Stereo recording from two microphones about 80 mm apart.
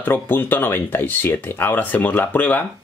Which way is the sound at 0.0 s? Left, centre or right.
Left.